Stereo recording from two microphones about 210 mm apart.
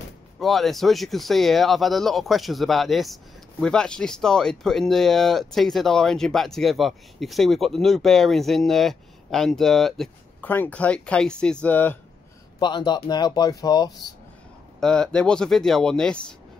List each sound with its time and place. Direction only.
0.4 s speech: centre (ahead or behind)
12.5 s speech: 20° left (ahead or behind)
14.8 s speech: 5° left (ahead or behind)